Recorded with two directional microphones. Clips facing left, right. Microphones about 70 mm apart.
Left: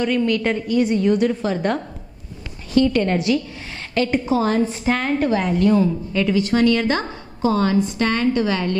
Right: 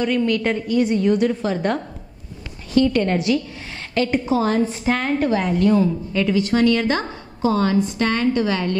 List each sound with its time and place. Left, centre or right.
0.0 s a woman's voice: centre